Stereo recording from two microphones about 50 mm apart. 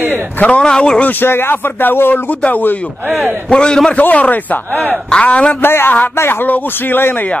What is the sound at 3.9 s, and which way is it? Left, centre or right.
Speech, left.